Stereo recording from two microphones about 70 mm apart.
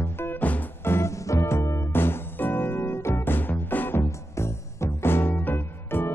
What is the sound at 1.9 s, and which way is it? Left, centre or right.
Music, left.